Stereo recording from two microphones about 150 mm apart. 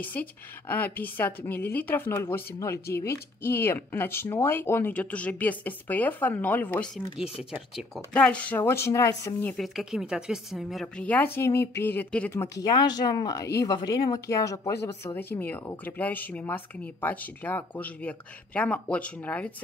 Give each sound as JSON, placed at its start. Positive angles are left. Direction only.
{"t": 0.0, "sound": "speech", "side_deg": 10}
{"t": 7.3, "sound": "speech", "side_deg": -5}
{"t": 8.1, "sound": "speech", "side_deg": 10}
{"t": 9.6, "sound": "speech", "side_deg": 0}
{"t": 12.6, "sound": "speech", "side_deg": 25}